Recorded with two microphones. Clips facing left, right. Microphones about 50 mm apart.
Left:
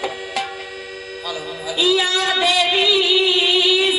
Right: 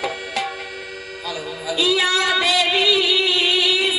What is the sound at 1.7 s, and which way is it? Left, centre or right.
Music, centre.